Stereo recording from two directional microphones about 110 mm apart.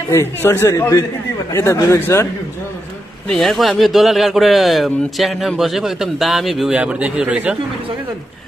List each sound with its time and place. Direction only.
0.1 s a man's voice: 25° left (ahead or behind)
3.3 s a man's voice: 5° left (ahead or behind)
6.7 s speech: 10° right (ahead or behind)